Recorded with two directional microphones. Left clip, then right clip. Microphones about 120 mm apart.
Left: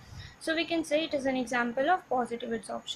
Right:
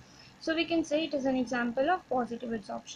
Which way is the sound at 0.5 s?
25° right (ahead or behind).